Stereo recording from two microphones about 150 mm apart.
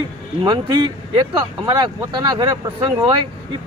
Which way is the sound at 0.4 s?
30° right (ahead or behind).